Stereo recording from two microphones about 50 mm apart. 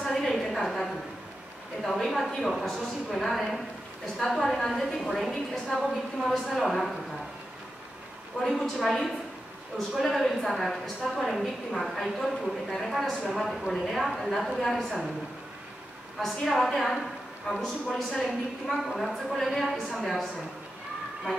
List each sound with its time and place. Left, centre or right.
0.0 s a sound: centre
1.8 s a woman's voice: centre
8.4 s a woman's voice: centre
13.1 s a woman's voice: centre
13.4 s a woman's voice: centre
16.2 s a woman's voice: centre